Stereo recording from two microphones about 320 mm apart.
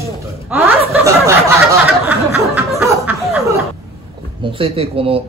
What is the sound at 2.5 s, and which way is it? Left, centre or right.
Snicker, centre.